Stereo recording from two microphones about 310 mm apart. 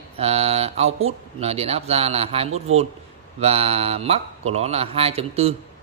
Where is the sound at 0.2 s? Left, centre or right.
Centre.